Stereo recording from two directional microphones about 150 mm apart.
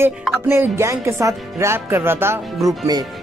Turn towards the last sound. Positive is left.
turn(degrees=-25)  # may be behind; listen again after turning